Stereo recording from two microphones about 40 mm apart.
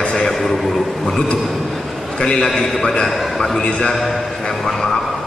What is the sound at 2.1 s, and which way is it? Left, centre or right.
Speech, centre.